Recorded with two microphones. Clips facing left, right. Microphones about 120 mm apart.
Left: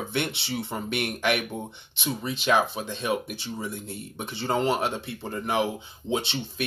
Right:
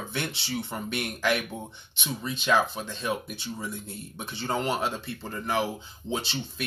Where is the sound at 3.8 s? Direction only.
25° left (ahead or behind).